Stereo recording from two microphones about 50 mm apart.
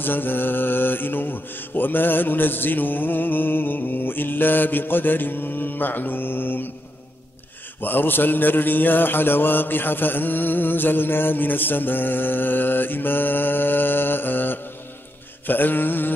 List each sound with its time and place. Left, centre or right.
0.0 s mantra: left
7.8 s mantra: left